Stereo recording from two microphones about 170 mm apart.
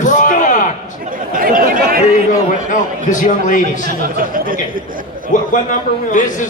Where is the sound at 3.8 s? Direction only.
60° right (ahead or behind).